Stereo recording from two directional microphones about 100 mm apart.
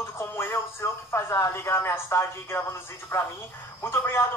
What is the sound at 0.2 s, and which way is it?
Speech, 25° left (ahead or behind).